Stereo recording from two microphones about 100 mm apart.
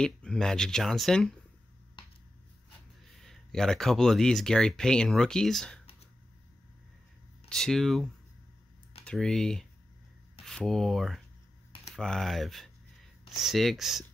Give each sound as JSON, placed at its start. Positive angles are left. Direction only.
{"t": 0.0, "sound": "speech", "side_deg": 5}
{"t": 2.0, "sound": "a sound", "side_deg": 50}
{"t": 3.2, "sound": "speech", "side_deg": 5}
{"t": 7.4, "sound": "speech", "side_deg": 5}
{"t": 9.0, "sound": "speech", "side_deg": 5}